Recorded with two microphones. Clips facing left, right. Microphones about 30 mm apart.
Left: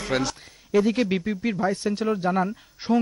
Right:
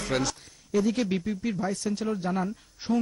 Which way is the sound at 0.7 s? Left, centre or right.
Left.